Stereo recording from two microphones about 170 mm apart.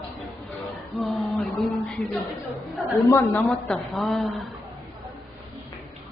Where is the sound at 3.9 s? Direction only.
Centre (ahead or behind).